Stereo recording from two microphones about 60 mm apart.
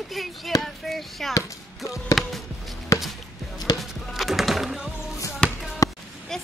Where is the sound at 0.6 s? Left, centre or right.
Centre.